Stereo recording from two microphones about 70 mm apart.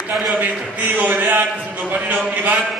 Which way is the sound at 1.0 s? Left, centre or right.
Right.